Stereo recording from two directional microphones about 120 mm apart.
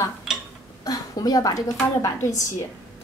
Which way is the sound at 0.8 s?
30° left (ahead or behind).